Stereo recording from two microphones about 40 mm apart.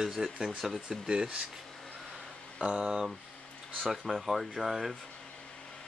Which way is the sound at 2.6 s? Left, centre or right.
Right.